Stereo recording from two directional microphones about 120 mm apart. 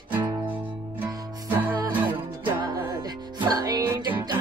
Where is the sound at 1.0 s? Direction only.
15° right (ahead or behind).